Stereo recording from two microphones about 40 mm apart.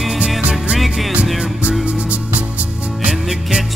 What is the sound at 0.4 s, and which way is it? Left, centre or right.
Music, right.